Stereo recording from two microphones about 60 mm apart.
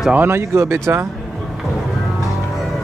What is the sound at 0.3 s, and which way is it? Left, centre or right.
Speech, right.